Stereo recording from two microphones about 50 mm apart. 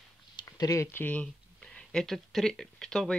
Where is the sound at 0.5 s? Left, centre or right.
Left.